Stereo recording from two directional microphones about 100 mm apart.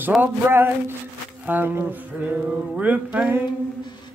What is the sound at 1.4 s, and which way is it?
Music, 20° right (ahead or behind).